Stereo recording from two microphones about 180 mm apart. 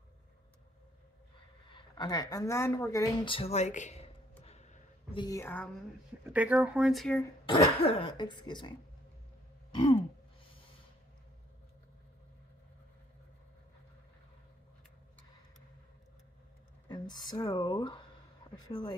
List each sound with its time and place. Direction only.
1.7 s speech: 25° left (ahead or behind)
3.3 s a sound: 30° left (ahead or behind)
5.2 s a woman's voice: 15° left (ahead or behind)
6.2 s speech: 10° right (ahead or behind)
7.4 s speech: 25° left (ahead or behind)
9.7 s throat clearing: 30° left (ahead or behind)
16.9 s speech: 25° left (ahead or behind)